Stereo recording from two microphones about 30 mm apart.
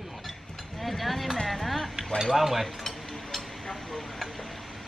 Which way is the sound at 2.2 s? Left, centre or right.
Centre.